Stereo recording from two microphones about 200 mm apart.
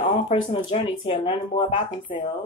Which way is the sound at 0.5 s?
25° left (ahead or behind).